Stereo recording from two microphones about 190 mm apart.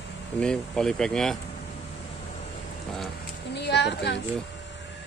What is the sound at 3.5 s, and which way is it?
Speech, 65° left (ahead or behind).